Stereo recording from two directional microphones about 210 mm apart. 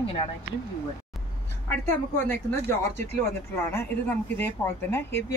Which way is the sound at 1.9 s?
10° left (ahead or behind).